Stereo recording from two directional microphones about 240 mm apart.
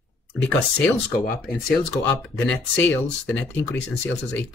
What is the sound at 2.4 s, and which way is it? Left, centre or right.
Speech, centre.